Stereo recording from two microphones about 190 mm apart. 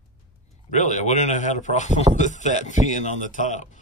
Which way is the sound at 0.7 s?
40° left (ahead or behind).